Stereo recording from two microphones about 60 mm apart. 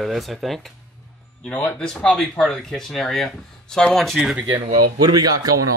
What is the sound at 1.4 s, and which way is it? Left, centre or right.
Speech, centre.